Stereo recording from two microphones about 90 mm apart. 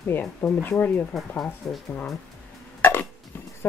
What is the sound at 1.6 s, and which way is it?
Speech, centre (ahead or behind).